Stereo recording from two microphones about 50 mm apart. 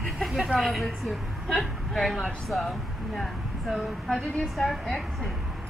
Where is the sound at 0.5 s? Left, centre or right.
Centre.